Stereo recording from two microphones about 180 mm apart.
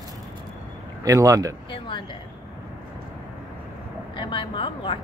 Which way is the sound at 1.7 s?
25° left (ahead or behind).